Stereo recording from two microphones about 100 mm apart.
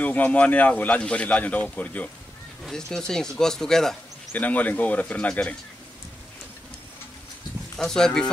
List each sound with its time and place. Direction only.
0.0 s speech: 15° left (ahead or behind)
4.3 s speech: 15° left (ahead or behind)
7.7 s speech: 5° left (ahead or behind)